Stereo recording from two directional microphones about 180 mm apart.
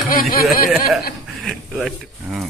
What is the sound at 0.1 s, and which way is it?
Speech, 50° left (ahead or behind).